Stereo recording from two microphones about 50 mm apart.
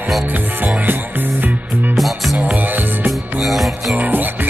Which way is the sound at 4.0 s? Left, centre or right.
Right.